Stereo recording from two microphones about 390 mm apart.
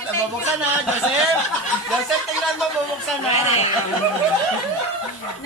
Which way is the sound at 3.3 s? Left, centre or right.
Centre.